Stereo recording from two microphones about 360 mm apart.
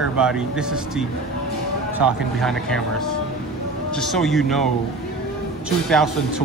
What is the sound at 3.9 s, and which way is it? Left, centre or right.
Speech, centre.